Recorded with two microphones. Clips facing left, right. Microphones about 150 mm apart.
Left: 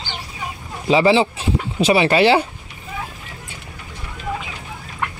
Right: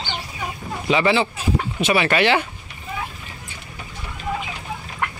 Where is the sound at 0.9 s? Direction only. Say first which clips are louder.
Left 4 dB; 30° left (ahead or behind).